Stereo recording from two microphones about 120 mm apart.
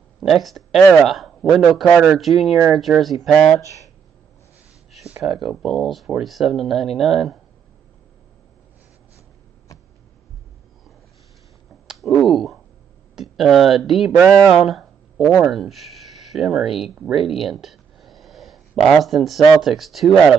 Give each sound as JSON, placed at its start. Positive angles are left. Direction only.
{"t": 0.2, "sound": "a man's voice", "side_deg": 0}
{"t": 5.2, "sound": "speech", "side_deg": 0}
{"t": 12.0, "sound": "a sound", "side_deg": 0}
{"t": 13.1, "sound": "speech", "side_deg": 0}
{"t": 14.5, "sound": "a sound", "side_deg": 0}
{"t": 15.4, "sound": "speech", "side_deg": 0}